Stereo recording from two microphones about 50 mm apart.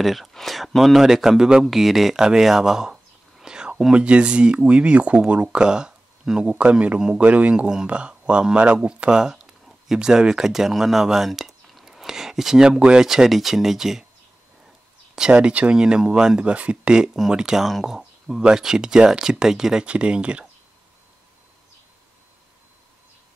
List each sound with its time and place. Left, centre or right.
0.0 s speech: centre; by 7.0 s right
7.0 s speech: centre
7.2 s speech: right; by 12.6 s centre
12.6 s speech: centre
15.3 s speech: right
15.7 s speech: centre
16.3 s speech: right
16.9 s speech: centre